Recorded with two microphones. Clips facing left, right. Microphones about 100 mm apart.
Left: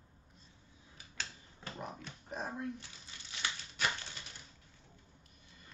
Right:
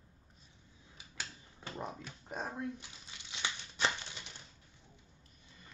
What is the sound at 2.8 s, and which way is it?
Crumpling, 20° right (ahead or behind).